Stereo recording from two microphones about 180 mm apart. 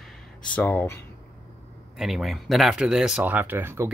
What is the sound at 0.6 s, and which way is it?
Speech, 10° left (ahead or behind).